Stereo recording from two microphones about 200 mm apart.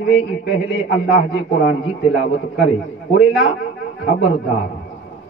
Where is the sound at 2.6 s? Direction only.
55° left (ahead or behind).